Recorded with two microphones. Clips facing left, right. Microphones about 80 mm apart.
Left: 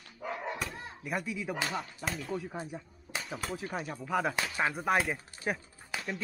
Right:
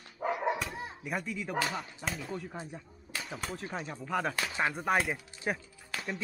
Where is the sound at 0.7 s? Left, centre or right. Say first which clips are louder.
Right 3 dB; centre.